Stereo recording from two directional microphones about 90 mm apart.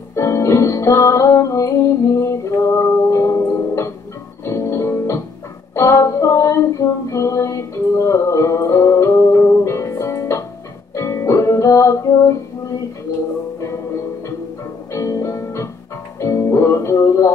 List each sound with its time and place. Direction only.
0.1 s music: 35° left (ahead or behind)
5.8 s female singing: 35° left (ahead or behind)
7.1 s music: 35° left (ahead or behind)
14.9 s music: 35° left (ahead or behind)